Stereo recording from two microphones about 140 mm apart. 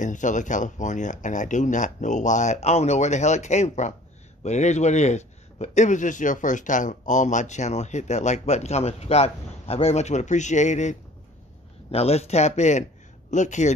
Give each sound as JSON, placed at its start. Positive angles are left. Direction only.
{"t": 0.0, "sound": "speech", "side_deg": 65}
{"t": 11.9, "sound": "speech", "side_deg": 50}